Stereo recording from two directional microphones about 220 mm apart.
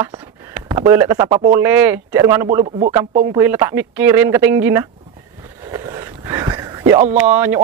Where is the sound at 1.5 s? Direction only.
10° right (ahead or behind).